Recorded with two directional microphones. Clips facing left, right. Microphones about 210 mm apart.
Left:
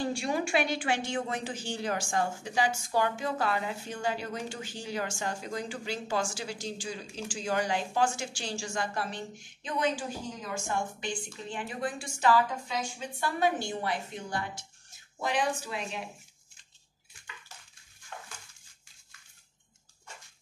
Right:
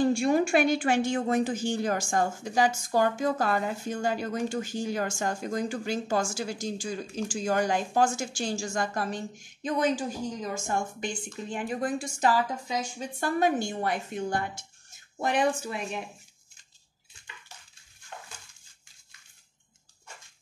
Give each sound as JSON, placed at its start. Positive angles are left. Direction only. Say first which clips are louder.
{"t": 0.0, "sound": "a woman's voice", "louder": "right 7 dB", "side_deg": -45}